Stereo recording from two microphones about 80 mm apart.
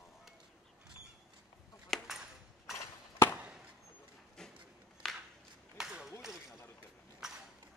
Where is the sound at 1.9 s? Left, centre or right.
Centre.